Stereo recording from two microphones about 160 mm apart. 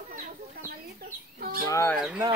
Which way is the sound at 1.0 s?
60° right (ahead or behind).